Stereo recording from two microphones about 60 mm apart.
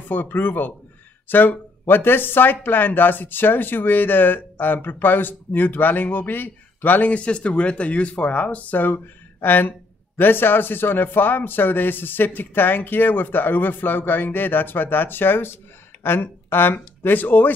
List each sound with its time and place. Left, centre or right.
0.1 s speech: left